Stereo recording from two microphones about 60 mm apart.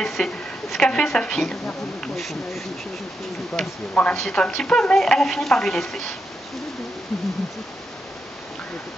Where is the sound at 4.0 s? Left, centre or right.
Centre.